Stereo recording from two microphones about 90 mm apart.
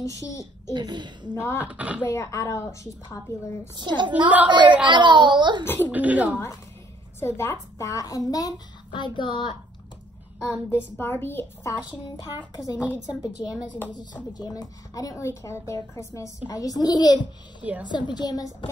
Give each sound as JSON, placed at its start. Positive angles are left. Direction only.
{"t": 0.0, "sound": "a woman's voice", "side_deg": 35}
{"t": 0.7, "sound": "a child's voice", "side_deg": -55}
{"t": 1.3, "sound": "a woman's voice", "side_deg": 30}
{"t": 1.6, "sound": "speech", "side_deg": -15}
{"t": 2.0, "sound": "a woman's voice", "side_deg": 35}
{"t": 3.7, "sound": "a child's voice", "side_deg": -55}
{"t": 4.6, "sound": "speech", "side_deg": -15}
{"t": 4.8, "sound": "a child's voice", "side_deg": -60}
{"t": 5.9, "sound": "speech", "side_deg": -15}
{"t": 7.2, "sound": "a woman's voice", "side_deg": 30}
{"t": 7.8, "sound": "a woman's voice", "side_deg": 40}
{"t": 10.4, "sound": "a woman's voice", "side_deg": 30}
{"t": 12.5, "sound": "a woman's voice", "side_deg": 45}
{"t": 14.3, "sound": "a woman's voice", "side_deg": 50}